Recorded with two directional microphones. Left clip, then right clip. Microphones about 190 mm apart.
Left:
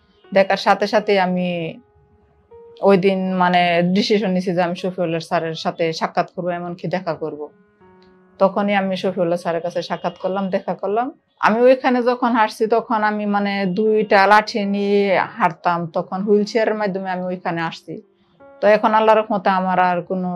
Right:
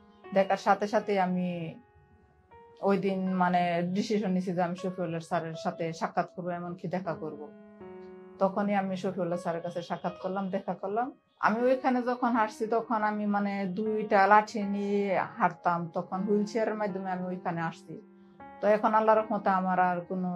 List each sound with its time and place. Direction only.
0.3 s speech: 25° left (ahead or behind)
2.8 s speech: 25° left (ahead or behind)
8.4 s speech: 25° left (ahead or behind)